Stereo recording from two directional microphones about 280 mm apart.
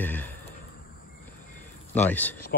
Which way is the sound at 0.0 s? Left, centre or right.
Centre.